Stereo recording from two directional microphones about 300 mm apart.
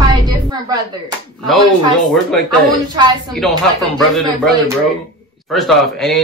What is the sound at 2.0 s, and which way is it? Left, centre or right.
Speech, centre.